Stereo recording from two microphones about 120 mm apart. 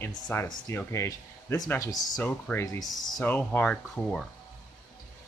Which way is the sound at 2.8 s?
Centre (ahead or behind).